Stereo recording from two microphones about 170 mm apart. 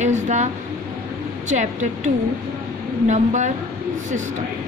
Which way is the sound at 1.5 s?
45° right (ahead or behind).